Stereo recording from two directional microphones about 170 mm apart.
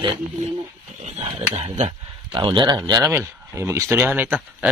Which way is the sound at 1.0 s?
40° right (ahead or behind).